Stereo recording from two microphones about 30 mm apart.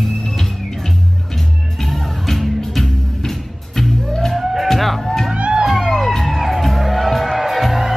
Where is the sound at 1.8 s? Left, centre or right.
Centre.